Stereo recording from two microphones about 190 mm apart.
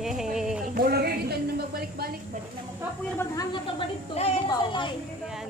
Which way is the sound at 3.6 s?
35° left (ahead or behind).